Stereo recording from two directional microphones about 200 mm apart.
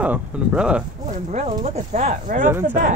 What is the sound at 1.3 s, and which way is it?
Speech, 35° right (ahead or behind).